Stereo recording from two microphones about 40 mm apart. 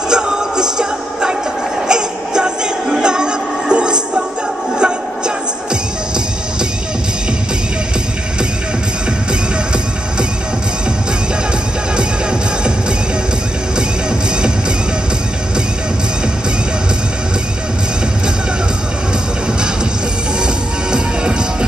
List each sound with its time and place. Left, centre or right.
0.1 s music: centre
12.0 s music: right
20.4 s music: right